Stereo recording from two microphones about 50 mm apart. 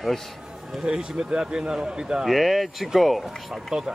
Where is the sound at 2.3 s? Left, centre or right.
Centre.